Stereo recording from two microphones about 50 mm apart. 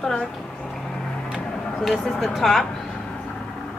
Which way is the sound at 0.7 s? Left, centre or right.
Centre.